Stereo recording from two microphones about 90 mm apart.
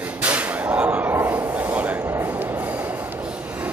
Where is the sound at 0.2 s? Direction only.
15° right (ahead or behind).